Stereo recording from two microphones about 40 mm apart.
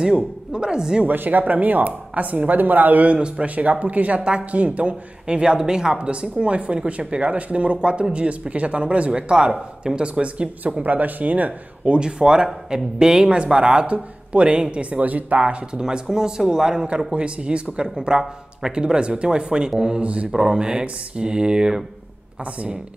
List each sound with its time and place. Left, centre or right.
0.0 s speech: right
1.0 s speech: right
3.1 s speech: right
5.2 s speech: right
10.8 s speech: right
11.8 s speech: right
15.7 s speech: centre
22.4 s speech: right